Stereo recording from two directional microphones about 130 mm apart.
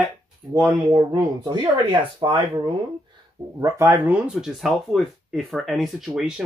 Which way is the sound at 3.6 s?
20° right (ahead or behind).